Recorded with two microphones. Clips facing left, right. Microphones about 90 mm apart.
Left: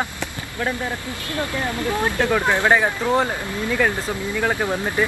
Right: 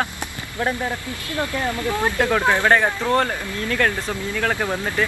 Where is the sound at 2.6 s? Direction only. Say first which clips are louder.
Even; 15° left (ahead or behind).